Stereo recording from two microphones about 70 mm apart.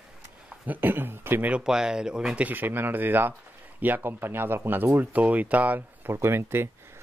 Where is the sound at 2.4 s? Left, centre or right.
Right.